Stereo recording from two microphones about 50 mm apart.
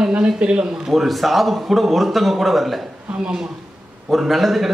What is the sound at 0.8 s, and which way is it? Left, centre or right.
A man's voice, centre.